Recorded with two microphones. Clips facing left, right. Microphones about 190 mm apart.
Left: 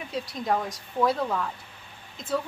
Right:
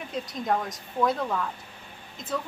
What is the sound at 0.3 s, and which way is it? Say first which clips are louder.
A woman's voice: even; centre (ahead or behind).